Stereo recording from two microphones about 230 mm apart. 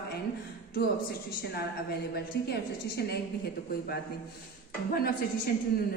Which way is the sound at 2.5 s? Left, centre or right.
Left.